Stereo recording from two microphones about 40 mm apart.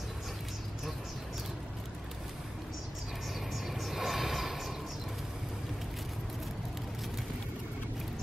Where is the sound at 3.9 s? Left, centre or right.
Centre.